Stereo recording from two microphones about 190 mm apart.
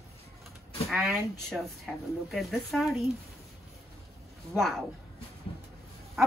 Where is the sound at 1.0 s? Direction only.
Centre (ahead or behind).